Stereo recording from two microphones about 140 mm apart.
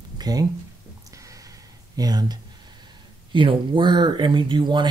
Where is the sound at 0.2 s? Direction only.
25° right (ahead or behind).